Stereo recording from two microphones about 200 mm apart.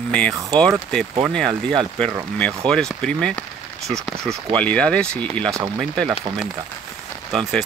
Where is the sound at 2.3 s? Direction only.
5° left (ahead or behind).